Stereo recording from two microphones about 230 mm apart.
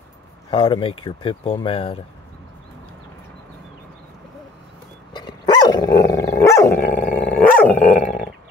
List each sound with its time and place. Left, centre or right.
0.5 s speech: left
5.1 s dog: centre